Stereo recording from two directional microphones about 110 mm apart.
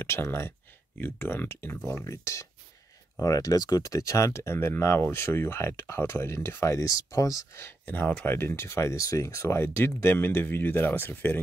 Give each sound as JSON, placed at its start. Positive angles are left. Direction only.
{"t": 0.0, "sound": "speech", "side_deg": 20}